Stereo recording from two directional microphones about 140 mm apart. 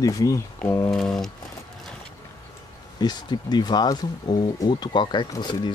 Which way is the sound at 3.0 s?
30° left (ahead or behind).